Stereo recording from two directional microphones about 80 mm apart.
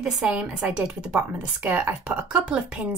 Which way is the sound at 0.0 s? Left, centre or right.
Centre.